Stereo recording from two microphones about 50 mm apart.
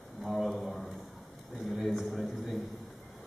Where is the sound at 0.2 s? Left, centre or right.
Centre.